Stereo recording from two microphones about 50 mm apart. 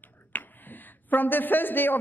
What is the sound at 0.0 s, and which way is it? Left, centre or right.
A woman's voice, left.